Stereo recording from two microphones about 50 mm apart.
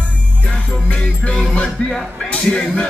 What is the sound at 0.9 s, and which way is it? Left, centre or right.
Music, left.